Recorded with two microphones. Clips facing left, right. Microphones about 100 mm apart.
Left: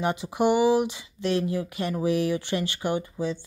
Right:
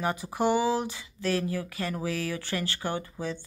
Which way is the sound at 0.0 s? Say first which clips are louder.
Left 3 dB; 20° left (ahead or behind).